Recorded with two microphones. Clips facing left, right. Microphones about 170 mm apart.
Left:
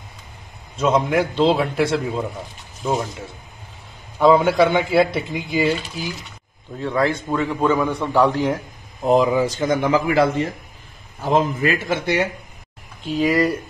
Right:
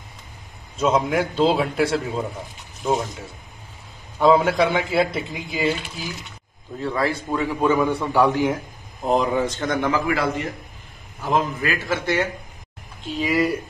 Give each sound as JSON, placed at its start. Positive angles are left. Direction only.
{"t": 0.7, "sound": "speech", "side_deg": -5}
{"t": 4.2, "sound": "speech", "side_deg": 0}
{"t": 6.8, "sound": "a man's voice", "side_deg": 0}
{"t": 9.0, "sound": "speech", "side_deg": 5}
{"t": 9.8, "sound": "a man's voice", "side_deg": 20}
{"t": 13.0, "sound": "speech", "side_deg": 0}